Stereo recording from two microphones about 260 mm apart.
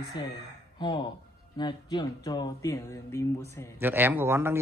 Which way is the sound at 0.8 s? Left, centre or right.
Centre.